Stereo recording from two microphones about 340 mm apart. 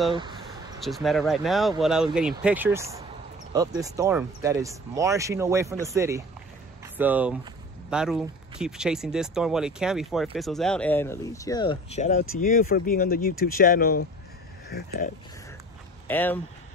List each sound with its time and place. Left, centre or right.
0.1 s a sound: centre
0.8 s speech: centre; by 15.0 s left
16.1 s speech: centre